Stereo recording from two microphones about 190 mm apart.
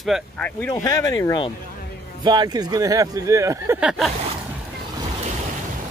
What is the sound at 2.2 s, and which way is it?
Speech, 20° right (ahead or behind).